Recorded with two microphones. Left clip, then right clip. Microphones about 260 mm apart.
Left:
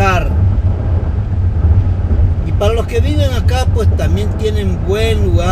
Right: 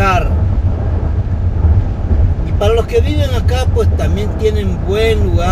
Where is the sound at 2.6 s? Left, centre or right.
Centre.